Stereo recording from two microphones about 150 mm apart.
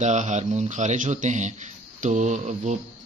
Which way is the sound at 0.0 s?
50° right (ahead or behind).